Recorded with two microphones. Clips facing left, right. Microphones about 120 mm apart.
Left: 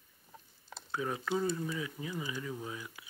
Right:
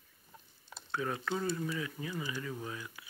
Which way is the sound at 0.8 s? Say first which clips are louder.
Even; 10° left (ahead or behind).